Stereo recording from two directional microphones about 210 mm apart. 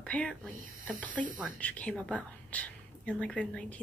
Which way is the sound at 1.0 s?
5° left (ahead or behind).